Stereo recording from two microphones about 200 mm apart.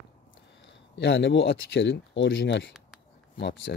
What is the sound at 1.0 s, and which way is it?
Speech, 60° left (ahead or behind).